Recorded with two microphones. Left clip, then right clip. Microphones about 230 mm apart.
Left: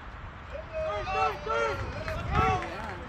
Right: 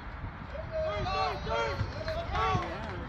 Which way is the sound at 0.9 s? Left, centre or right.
Left.